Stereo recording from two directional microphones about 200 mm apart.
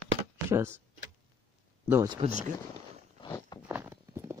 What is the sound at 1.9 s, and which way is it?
Speech, 15° right (ahead or behind).